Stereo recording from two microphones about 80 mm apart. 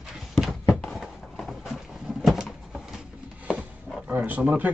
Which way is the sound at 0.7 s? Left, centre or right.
Centre.